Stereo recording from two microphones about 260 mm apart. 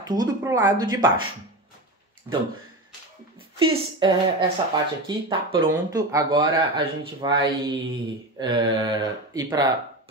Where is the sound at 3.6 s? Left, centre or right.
Centre.